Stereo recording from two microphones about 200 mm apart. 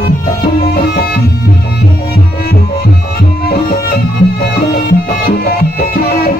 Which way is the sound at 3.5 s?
50° left (ahead or behind).